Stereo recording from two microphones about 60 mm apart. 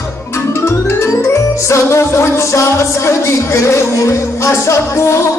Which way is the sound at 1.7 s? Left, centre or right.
Left.